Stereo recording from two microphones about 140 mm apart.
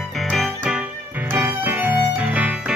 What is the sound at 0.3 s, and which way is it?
Music, 5° right (ahead or behind).